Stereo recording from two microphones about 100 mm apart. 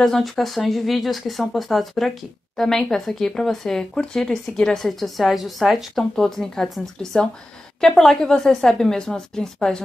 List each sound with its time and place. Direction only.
0.0 s speech: centre (ahead or behind)